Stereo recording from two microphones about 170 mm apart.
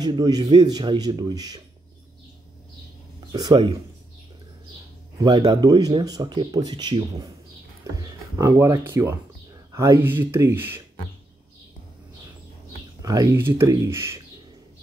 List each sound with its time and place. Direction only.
0.0 s speech: 25° right (ahead or behind)
3.2 s speech: 25° right (ahead or behind)
5.2 s speech: 25° right (ahead or behind)
13.0 s speech: 20° right (ahead or behind)